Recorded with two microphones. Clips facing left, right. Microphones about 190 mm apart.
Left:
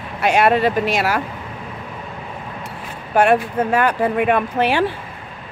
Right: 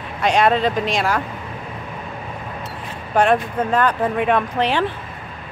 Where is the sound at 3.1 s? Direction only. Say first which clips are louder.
Left 2 dB; 10° left (ahead or behind).